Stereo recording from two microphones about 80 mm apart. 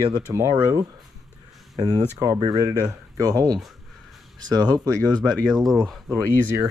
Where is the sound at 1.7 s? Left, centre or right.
Right.